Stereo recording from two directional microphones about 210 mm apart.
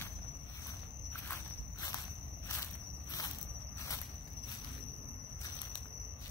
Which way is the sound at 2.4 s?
15° left (ahead or behind).